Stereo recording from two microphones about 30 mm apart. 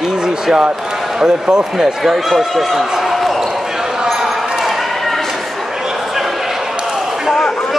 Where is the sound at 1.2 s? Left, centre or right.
Right.